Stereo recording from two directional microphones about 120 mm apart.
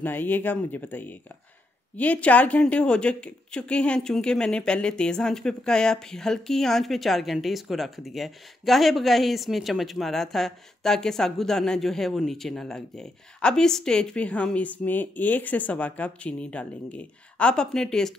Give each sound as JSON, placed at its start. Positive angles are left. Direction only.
{"t": 0.0, "sound": "a woman's voice", "side_deg": 15}